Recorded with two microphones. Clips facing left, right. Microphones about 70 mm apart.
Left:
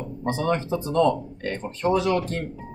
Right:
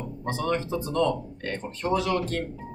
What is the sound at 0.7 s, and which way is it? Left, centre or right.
Speech, left.